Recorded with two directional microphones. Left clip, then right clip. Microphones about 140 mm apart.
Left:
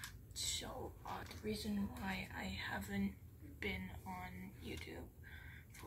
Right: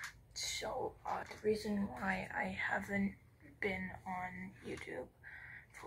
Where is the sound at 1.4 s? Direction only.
20° left (ahead or behind).